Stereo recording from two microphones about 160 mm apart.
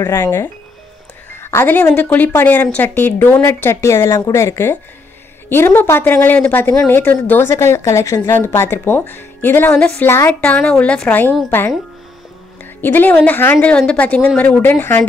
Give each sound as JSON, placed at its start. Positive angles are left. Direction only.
{"t": 0.0, "sound": "a woman's voice", "side_deg": 15}
{"t": 12.8, "sound": "a woman's voice", "side_deg": 10}